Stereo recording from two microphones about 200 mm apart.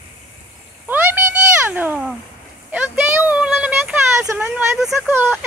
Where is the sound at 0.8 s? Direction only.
10° right (ahead or behind).